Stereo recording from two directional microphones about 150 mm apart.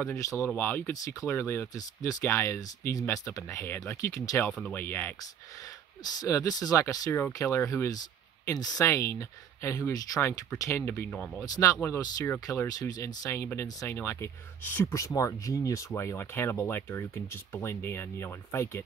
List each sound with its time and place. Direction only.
0.1 s speech: 20° left (ahead or behind)
4.5 s speech: centre (ahead or behind)
4.7 s speech: 15° left (ahead or behind)
6.1 s speech: 20° left (ahead or behind)
11.1 s speech: 5° left (ahead or behind)
11.3 s speech: 20° left (ahead or behind)